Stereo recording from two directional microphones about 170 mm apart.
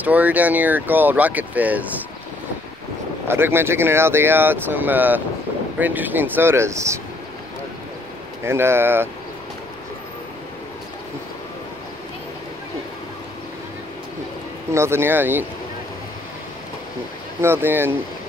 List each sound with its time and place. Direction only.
0.0 s speech: 10° right (ahead or behind)
3.3 s speech: 15° right (ahead or behind)
8.5 s speech: 15° right (ahead or behind)
14.7 s speech: 15° right (ahead or behind)
17.4 s speech: 15° right (ahead or behind)